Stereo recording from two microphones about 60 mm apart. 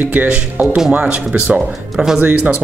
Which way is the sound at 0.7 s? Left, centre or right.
Centre.